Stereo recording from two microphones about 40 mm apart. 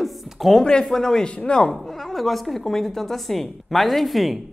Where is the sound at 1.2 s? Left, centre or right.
Left.